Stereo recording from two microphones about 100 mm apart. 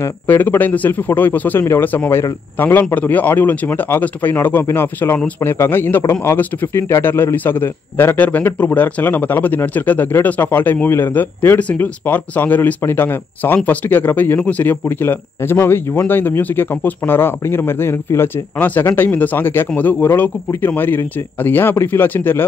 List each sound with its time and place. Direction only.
0.0 s speech: 20° left (ahead or behind)